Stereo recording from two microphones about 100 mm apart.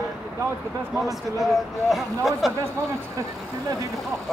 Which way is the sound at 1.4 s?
Centre (ahead or behind).